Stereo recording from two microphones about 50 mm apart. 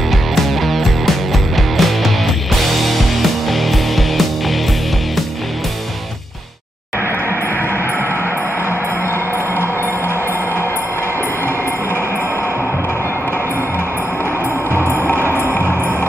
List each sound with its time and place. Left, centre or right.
0.6 s music: centre
15.1 s music: right
15.5 s music: left